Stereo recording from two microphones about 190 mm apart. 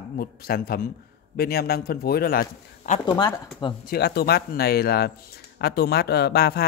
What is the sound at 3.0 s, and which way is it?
Speech, 25° left (ahead or behind).